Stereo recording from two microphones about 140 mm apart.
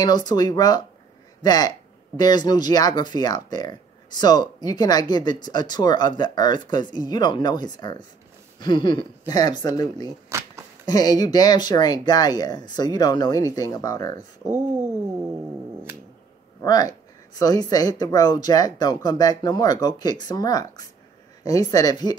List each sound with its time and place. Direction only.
0.0 s speech: 30° left (ahead or behind)
16.6 s speech: 25° left (ahead or behind)